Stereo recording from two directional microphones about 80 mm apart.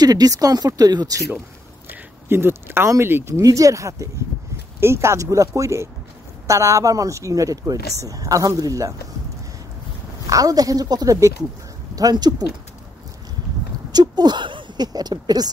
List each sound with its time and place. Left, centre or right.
0.0 s speech: right
1.9 s speech: right
3.4 s speech: right
10.2 s speech: right
13.9 s speech: right
14.9 s speech: right